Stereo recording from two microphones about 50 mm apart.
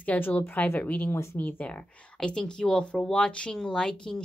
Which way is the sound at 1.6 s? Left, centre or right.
Left.